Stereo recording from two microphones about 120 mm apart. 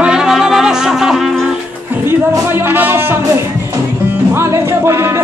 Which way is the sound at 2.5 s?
20° right (ahead or behind).